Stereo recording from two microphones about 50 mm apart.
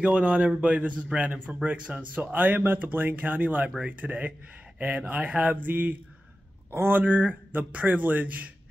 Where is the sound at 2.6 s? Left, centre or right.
Right.